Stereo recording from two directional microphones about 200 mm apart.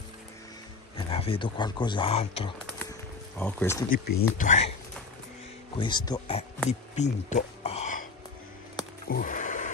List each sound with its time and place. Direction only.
0.9 s speech: 30° left (ahead or behind)
3.3 s speech: 10° left (ahead or behind)
3.9 s speech: 50° left (ahead or behind)
4.4 s speech: 35° left (ahead or behind)
5.8 s speech: 20° left (ahead or behind)
6.7 s speech: 35° left (ahead or behind)
9.1 s a sound: 40° left (ahead or behind)